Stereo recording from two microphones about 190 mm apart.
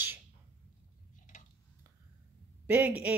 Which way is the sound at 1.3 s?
40° left (ahead or behind).